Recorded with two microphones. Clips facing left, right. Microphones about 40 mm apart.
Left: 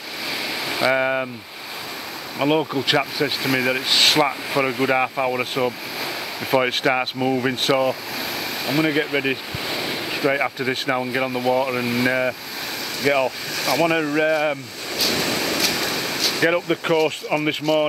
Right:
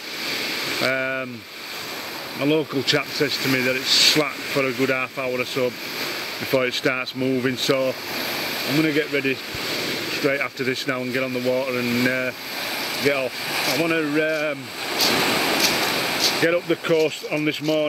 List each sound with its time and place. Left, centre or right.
0.7 s speech: centre
2.3 s speech: centre
15.1 s a sound: centre
15.7 s vehicle: centre
16.2 s a sound: centre
16.4 s speech: centre
16.7 s speech: centre